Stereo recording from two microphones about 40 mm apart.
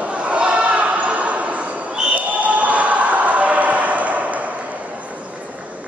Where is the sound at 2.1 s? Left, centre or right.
Right.